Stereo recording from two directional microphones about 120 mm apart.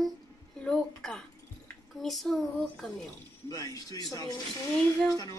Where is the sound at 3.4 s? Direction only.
30° left (ahead or behind).